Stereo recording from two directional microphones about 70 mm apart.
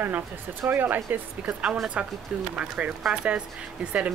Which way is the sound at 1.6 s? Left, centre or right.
Centre.